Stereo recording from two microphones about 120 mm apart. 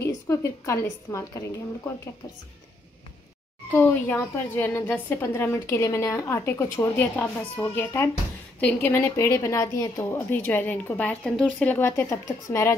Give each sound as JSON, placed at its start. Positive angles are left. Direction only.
{"t": 0.0, "sound": "a woman's voice", "side_deg": 25}
{"t": 3.7, "sound": "a woman's voice", "side_deg": 15}